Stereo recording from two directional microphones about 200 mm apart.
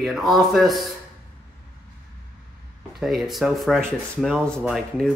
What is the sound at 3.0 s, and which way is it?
Speech, centre (ahead or behind).